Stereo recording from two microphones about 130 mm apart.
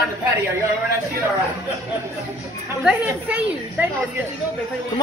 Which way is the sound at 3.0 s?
10° right (ahead or behind).